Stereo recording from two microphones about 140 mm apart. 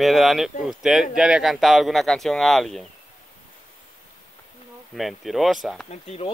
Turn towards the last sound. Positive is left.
turn(degrees=50)  # may be behind; listen again after turning